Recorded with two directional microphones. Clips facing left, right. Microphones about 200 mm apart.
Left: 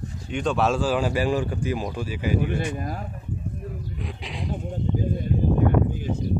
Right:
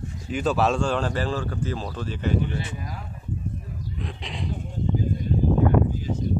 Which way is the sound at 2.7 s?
50° left (ahead or behind).